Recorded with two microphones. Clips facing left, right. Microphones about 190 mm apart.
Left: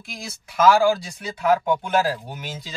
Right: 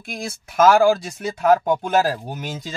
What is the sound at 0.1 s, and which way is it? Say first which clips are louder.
Speech: right 6 dB; 50° right (ahead or behind).